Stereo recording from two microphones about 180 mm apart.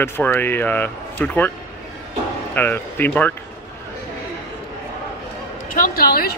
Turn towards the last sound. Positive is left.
turn(degrees=55)  # may be behind; listen again after turning